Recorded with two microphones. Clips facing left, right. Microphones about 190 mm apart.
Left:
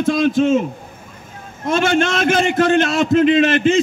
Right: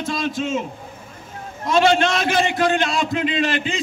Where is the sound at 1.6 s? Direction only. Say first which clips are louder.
Even; 50° left (ahead or behind).